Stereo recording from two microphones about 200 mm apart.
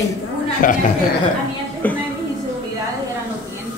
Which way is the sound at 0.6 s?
45° left (ahead or behind).